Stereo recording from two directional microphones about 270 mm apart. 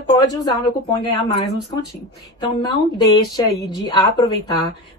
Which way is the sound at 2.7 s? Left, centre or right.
Centre.